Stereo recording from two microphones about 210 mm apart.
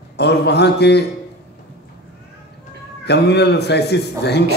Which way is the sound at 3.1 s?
55° left (ahead or behind).